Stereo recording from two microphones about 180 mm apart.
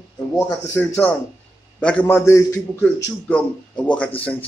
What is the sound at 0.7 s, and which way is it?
A man's voice, 10° left (ahead or behind).